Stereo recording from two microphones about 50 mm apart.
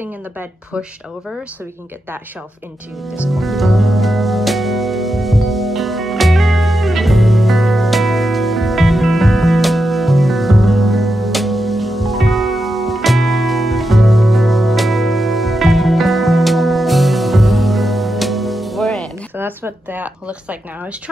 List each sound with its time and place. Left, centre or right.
3.3 s music: centre
19.3 s a sound: right
20.2 s speech: right